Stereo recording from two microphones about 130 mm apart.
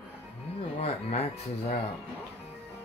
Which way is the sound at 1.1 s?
55° left (ahead or behind).